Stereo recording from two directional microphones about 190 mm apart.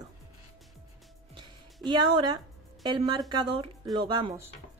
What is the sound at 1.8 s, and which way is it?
A woman's voice, 20° right (ahead or behind).